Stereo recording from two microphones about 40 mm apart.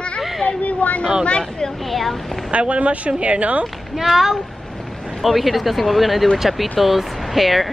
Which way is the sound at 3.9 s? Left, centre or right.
Centre.